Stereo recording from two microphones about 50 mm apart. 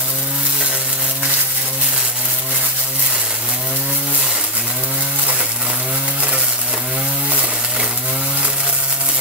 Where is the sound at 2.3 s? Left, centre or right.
Right.